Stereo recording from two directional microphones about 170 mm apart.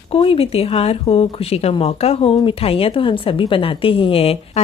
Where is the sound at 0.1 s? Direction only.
35° left (ahead or behind).